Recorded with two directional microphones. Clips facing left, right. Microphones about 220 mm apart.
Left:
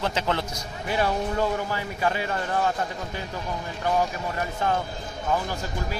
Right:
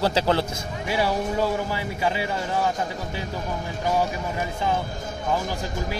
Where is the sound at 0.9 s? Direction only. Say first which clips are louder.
Right 1 dB; 5° right (ahead or behind).